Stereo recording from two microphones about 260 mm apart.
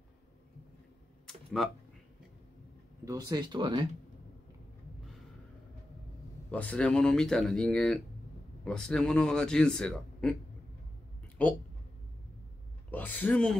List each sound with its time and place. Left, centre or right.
1.2 s a sound: centre
3.1 s speech: centre
6.5 s speech: centre
11.4 s speech: centre
12.9 s speech: centre